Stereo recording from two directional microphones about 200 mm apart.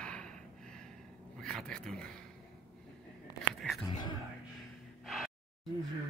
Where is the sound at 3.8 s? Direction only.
20° left (ahead or behind).